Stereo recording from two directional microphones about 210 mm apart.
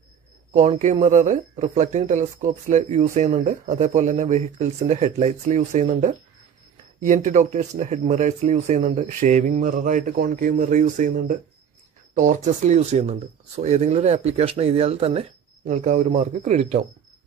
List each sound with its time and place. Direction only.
0.5 s speech: 35° right (ahead or behind)